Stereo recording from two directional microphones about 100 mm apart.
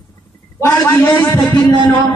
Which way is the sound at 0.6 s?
30° left (ahead or behind).